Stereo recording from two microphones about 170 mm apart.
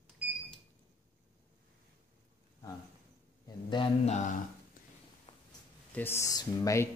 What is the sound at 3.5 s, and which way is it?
Speech, 30° left (ahead or behind).